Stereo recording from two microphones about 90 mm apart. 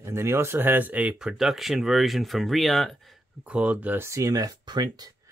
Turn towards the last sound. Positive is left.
turn(degrees=-50)  # may be behind; listen again after turning